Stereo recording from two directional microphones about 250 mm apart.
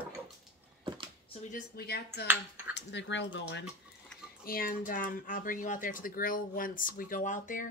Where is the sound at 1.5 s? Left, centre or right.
Left.